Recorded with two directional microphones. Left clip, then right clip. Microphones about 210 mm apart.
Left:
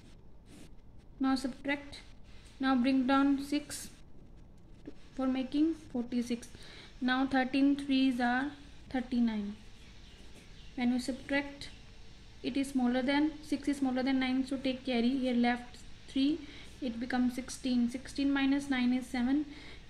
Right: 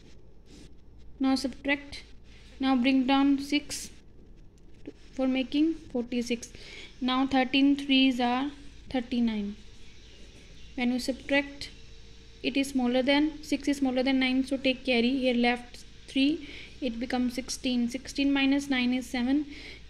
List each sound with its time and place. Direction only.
1.2 s a woman's voice: 10° right (ahead or behind)
5.1 s a woman's voice: 10° right (ahead or behind)
10.8 s a woman's voice: 15° right (ahead or behind)